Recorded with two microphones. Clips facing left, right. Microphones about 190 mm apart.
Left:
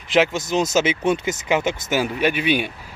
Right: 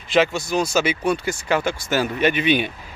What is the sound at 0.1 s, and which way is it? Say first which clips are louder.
Speech: even; 15° left (ahead or behind).